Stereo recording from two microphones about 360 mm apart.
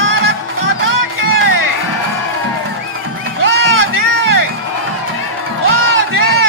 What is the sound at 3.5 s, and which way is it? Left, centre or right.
Music, right.